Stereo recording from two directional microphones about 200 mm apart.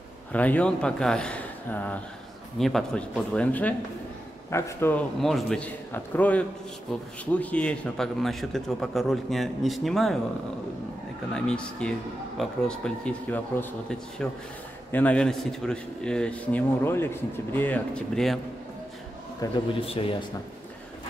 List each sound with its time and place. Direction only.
0.3 s a man's voice: 5° left (ahead or behind)
11.3 s a man's voice: 5° left (ahead or behind)
19.4 s speech: 15° left (ahead or behind)
19.8 s speech: 30° left (ahead or behind)